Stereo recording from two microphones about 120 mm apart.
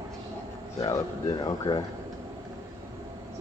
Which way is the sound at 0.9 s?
30° left (ahead or behind).